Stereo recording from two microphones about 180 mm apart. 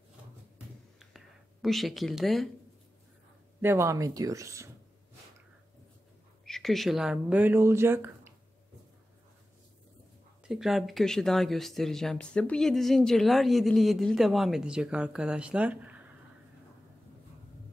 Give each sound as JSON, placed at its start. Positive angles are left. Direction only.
{"t": 0.9, "sound": "a sound", "side_deg": 0}
{"t": 3.6, "sound": "speech", "side_deg": -15}
{"t": 6.4, "sound": "speech", "side_deg": 0}
{"t": 10.4, "sound": "speech", "side_deg": 0}